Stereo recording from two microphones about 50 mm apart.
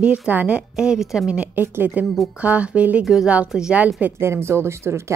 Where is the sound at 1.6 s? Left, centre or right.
Right.